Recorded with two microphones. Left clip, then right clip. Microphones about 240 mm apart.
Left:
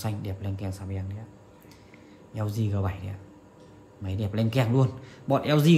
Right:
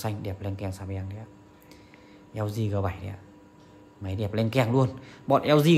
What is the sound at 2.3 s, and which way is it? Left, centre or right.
A man's voice, right.